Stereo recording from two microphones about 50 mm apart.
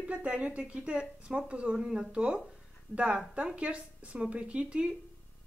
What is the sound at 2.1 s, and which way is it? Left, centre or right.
A woman's voice, right.